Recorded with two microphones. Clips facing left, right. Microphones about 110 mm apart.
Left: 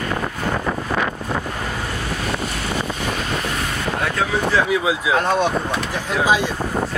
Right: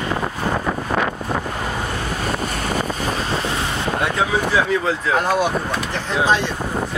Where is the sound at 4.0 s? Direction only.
20° right (ahead or behind).